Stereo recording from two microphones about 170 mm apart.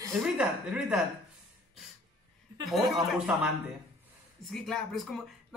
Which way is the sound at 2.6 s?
Centre (ahead or behind).